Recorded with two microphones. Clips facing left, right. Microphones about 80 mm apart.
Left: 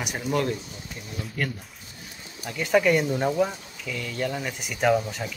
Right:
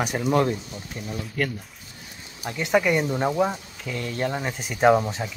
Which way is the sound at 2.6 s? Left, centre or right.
Centre.